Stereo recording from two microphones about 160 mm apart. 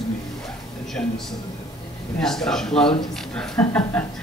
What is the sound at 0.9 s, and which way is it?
Speech, centre (ahead or behind).